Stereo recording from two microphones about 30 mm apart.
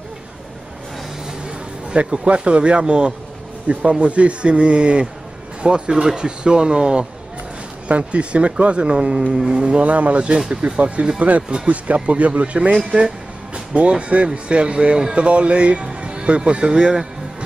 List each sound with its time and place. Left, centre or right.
1.9 s speech: right
3.7 s speech: right
7.9 s speech: right
8.8 s speech: right
9.8 s speech: right
11.1 s speech: right
13.7 s speech: right